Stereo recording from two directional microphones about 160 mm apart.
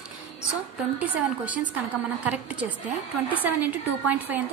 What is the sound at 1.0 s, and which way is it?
A woman's voice, 10° right (ahead or behind).